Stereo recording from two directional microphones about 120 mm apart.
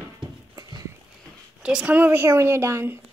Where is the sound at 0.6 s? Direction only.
30° right (ahead or behind).